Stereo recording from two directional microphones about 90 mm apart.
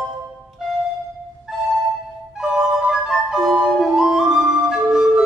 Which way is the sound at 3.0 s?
5° right (ahead or behind).